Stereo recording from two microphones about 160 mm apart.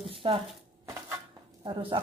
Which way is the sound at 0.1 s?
35° right (ahead or behind).